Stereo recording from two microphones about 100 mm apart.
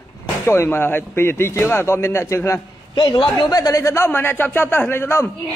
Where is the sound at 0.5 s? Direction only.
25° left (ahead or behind).